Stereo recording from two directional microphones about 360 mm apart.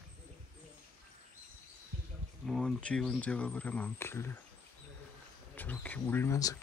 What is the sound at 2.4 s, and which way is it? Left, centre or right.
Speech, centre.